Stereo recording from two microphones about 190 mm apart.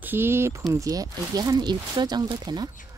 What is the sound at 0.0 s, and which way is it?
A woman's voice, 10° right (ahead or behind).